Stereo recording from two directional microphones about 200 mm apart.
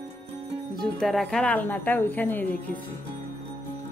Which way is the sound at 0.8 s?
Centre (ahead or behind).